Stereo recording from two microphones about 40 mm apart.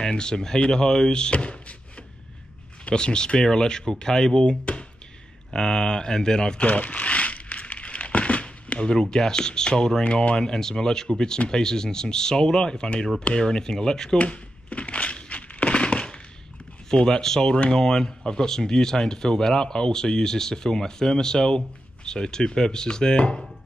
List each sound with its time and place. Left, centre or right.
0.0 s speech: centre
2.9 s speech: left
6.6 s crumpling: left
8.9 s speech: centre
14.1 s crumpling: left
16.9 s speech: centre
17.5 s speech: left
17.8 s speech: centre